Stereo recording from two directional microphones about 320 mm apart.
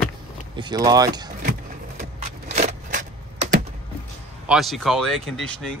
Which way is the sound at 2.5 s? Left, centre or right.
Right.